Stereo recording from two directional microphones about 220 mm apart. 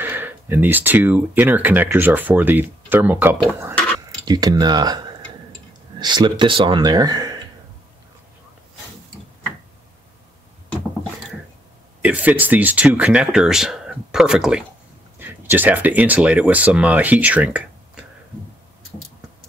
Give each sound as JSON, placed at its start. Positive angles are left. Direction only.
{"t": 0.0, "sound": "speech", "side_deg": -10}
{"t": 3.7, "sound": "a sound", "side_deg": 5}
{"t": 4.3, "sound": "speech", "side_deg": -20}
{"t": 12.0, "sound": "speech", "side_deg": -5}